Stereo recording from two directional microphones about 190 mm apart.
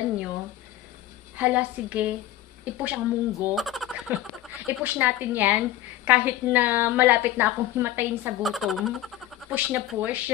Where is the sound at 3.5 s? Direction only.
Centre (ahead or behind).